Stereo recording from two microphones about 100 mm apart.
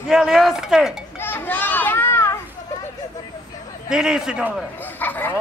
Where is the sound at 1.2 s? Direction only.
20° left (ahead or behind).